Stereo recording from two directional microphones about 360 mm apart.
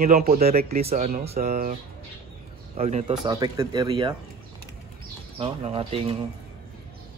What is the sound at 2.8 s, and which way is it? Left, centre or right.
Speech, centre.